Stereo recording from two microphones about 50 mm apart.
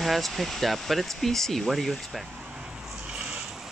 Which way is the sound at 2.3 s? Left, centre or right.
Right.